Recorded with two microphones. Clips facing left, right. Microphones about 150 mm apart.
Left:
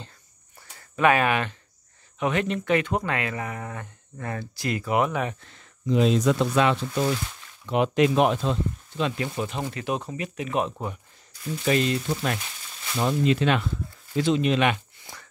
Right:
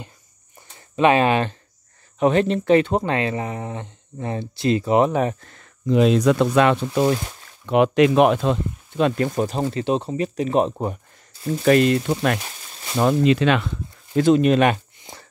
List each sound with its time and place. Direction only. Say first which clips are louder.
0.6 s a sound: right 5 dB; 20° right (ahead or behind)
2.1 s speech: right 7 dB; 35° right (ahead or behind); by 7.2 s 55° right (ahead or behind)
7.6 s speech: right 5 dB; 65° right (ahead or behind); by 11.6 s 35° right (ahead or behind)
11.6 s speech: right 7 dB; 60° right (ahead or behind)
12.9 s speech: right 6 dB; 80° right
14.1 s speech: right 7 dB; 50° right (ahead or behind)
15.1 s a sound: right 3 dB; 20° right (ahead or behind)